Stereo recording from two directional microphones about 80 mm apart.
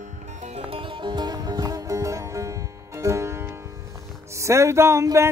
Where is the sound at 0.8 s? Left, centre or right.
Right.